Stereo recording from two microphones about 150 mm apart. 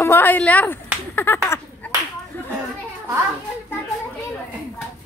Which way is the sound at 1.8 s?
10° left (ahead or behind).